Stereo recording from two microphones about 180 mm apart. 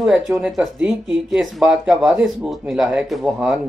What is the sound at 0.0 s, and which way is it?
Speech, 5° right (ahead or behind).